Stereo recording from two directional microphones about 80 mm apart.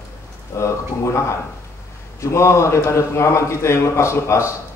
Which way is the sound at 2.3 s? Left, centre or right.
Left.